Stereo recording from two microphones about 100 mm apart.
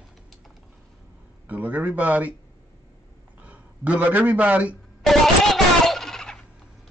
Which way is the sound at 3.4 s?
15° right (ahead or behind).